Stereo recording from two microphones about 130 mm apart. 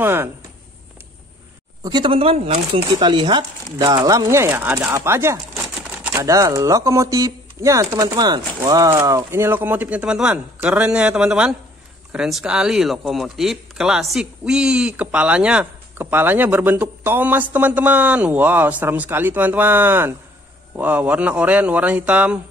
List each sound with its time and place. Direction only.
0.0 s speech: 15° right (ahead or behind)
1.8 s speech: 35° right (ahead or behind)
2.9 s speech: 35° right (ahead or behind); by 22.4 s 10° right (ahead or behind)